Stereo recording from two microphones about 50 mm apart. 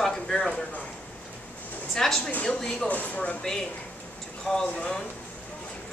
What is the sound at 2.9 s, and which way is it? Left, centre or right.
Speech, left.